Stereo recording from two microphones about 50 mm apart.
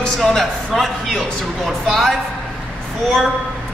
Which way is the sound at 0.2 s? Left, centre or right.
Centre.